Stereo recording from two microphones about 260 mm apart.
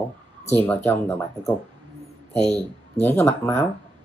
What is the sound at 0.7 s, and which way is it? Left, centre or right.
Speech, centre.